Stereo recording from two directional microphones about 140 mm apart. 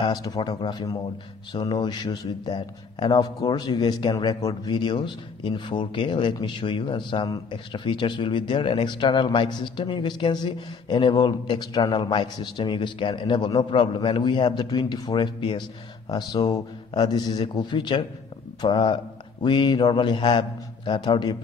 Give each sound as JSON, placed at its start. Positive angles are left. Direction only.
{"t": 0.0, "sound": "speech", "side_deg": 30}